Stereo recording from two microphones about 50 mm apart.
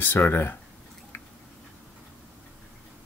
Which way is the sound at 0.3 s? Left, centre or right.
Left.